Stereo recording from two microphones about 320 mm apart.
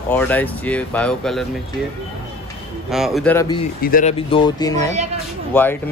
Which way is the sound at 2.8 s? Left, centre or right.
Centre.